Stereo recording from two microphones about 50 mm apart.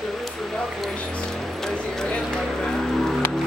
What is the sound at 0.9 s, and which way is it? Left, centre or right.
Music, left.